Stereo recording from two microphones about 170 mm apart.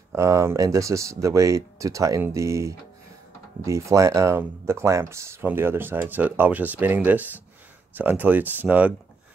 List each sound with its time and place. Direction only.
0.1 s speech: 15° right (ahead or behind)